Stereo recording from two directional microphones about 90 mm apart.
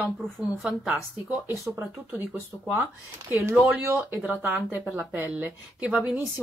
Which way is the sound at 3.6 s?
15° right (ahead or behind).